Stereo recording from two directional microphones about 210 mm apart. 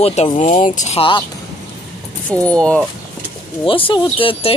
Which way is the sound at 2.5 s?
5° left (ahead or behind).